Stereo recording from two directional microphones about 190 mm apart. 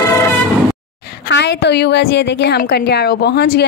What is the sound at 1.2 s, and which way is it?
A woman's voice, 65° left (ahead or behind).